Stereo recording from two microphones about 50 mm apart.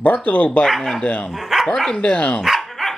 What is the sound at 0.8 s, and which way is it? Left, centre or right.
Speech, centre.